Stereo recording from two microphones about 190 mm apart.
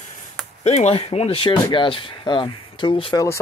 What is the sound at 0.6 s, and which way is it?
Speech, 35° left (ahead or behind).